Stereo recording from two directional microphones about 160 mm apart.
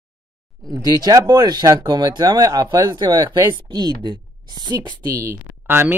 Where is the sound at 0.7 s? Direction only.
25° right (ahead or behind).